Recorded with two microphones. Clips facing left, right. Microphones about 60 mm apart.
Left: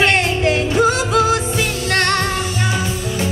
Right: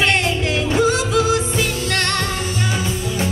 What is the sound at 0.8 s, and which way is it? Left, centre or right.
Music, left.